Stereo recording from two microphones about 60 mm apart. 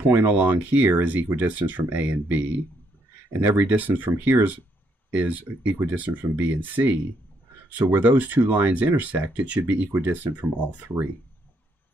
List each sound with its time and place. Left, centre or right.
0.0 s speech: right
3.5 s speech: right